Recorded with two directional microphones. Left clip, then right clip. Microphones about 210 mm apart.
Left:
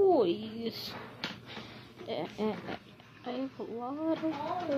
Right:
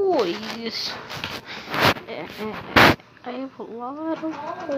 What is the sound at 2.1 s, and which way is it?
Artillery fire, 10° left (ahead or behind).